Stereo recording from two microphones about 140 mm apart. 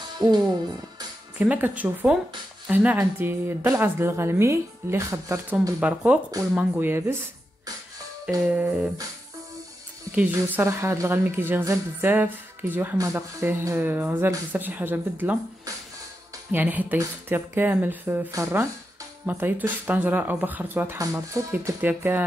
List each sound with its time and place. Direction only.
1.4 s speech: 10° right (ahead or behind)
8.5 s speech: 10° right (ahead or behind)
10.1 s speech: 15° right (ahead or behind)